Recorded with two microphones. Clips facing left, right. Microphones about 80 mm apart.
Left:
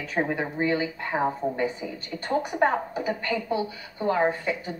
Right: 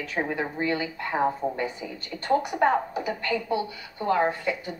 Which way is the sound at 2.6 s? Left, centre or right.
Left.